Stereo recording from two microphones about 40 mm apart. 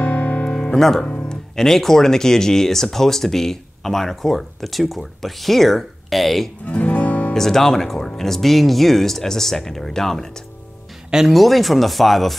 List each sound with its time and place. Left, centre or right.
0.0 s music: left
0.5 s music: centre
1.3 s speech: centre
6.6 s music: left
7.3 s speech: centre
11.2 s speech: centre